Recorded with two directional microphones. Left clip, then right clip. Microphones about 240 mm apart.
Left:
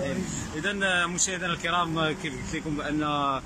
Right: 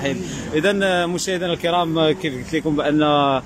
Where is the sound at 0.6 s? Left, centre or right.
Right.